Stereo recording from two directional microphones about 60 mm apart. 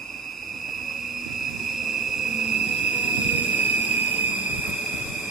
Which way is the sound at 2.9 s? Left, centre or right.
Right.